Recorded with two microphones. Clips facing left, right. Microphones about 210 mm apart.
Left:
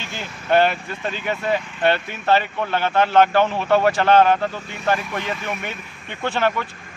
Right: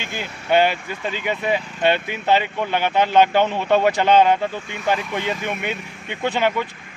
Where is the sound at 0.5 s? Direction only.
10° right (ahead or behind).